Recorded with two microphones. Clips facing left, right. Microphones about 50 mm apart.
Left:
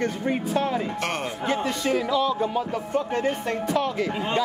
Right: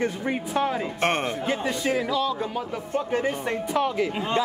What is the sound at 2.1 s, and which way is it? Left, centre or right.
Speech, centre.